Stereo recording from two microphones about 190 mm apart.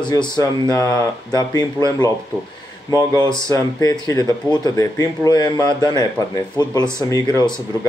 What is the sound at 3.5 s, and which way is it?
Speech, 20° left (ahead or behind).